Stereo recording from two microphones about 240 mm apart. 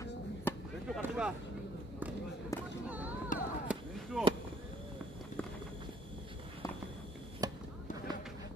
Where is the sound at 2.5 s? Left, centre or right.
Centre.